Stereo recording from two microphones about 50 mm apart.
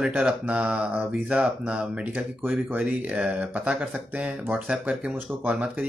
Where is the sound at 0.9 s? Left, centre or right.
Right.